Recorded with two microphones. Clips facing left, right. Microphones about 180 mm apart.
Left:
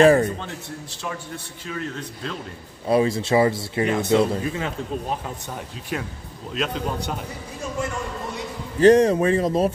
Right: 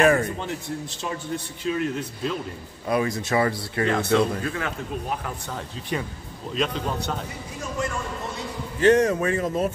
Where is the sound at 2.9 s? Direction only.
30° left (ahead or behind).